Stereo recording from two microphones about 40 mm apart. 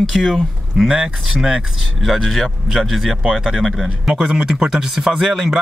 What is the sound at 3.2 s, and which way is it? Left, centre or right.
Speech, centre.